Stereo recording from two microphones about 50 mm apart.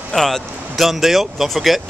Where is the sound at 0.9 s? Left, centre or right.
Centre.